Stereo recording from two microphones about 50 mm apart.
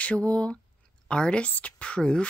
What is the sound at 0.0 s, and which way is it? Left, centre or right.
Speech, left.